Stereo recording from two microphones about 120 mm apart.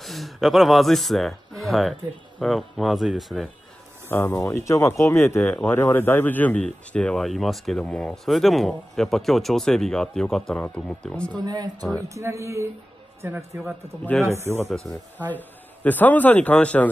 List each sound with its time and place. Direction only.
0.0 s speech: centre (ahead or behind)
4.1 s speech: 20° left (ahead or behind)
11.4 s a man's voice: 35° right (ahead or behind)
15.3 s a man's voice: 15° left (ahead or behind)